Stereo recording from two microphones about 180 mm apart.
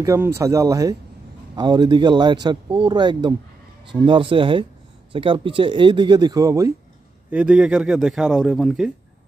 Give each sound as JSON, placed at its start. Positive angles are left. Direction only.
{"t": 0.0, "sound": "a man's voice", "side_deg": -15}
{"t": 7.2, "sound": "speech", "side_deg": -5}